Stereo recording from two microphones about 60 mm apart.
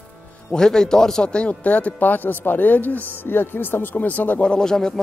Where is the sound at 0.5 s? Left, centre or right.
Centre; by 4.5 s left.